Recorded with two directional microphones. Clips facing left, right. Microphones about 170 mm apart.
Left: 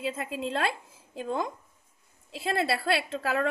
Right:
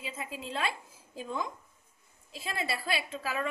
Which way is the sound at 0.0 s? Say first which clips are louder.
Left 8 dB; 65° left (ahead or behind).